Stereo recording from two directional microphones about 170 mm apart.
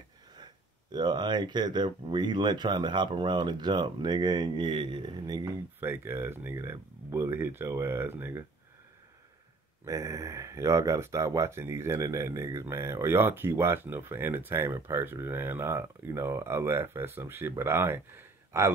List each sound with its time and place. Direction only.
0.9 s speech: 25° right (ahead or behind)
5.8 s speech: 15° right (ahead or behind)
9.8 s speech: 20° right (ahead or behind)